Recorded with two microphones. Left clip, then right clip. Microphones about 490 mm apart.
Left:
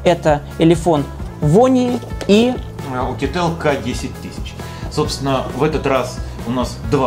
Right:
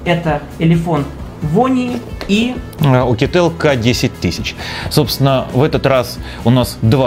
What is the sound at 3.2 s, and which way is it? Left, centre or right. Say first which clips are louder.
Speech: right 6 dB; right.